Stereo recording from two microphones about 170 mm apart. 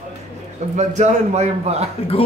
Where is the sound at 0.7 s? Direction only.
45° right (ahead or behind).